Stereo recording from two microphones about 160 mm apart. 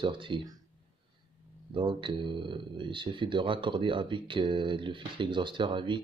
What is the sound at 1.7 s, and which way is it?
Speech, 30° right (ahead or behind).